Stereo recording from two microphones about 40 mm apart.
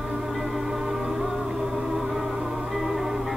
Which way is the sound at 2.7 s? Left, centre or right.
Centre.